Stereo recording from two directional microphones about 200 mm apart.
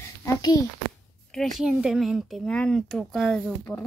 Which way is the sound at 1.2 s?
Centre (ahead or behind).